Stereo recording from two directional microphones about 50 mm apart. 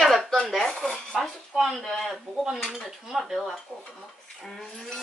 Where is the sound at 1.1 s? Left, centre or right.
Centre.